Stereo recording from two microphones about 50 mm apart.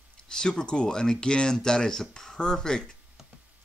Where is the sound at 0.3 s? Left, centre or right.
Centre.